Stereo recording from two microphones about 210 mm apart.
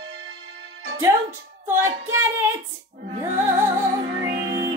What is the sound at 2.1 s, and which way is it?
Speech, 15° right (ahead or behind).